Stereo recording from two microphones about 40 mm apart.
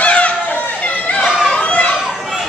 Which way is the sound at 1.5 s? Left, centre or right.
Left.